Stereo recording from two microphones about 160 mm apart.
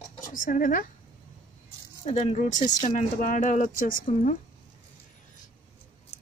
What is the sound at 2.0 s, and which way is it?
A woman's voice, 45° left (ahead or behind).